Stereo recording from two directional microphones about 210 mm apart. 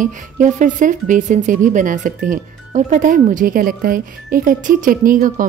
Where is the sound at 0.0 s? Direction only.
35° right (ahead or behind).